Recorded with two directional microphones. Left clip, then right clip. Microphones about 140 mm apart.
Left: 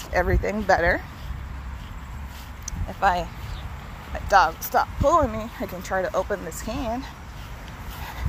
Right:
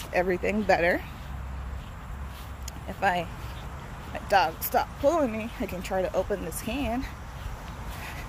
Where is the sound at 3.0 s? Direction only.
Centre (ahead or behind).